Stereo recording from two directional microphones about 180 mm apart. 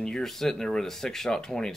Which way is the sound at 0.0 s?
5° left (ahead or behind).